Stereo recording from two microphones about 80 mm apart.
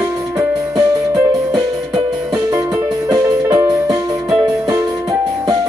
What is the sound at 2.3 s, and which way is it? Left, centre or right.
Music, right.